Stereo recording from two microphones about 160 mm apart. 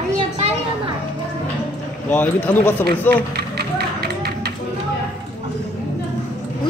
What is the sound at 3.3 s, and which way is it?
Music, 90° right.